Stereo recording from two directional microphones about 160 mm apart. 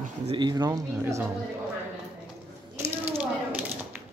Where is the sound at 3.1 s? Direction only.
10° right (ahead or behind).